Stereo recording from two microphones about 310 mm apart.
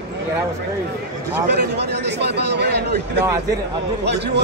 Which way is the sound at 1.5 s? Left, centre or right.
Right.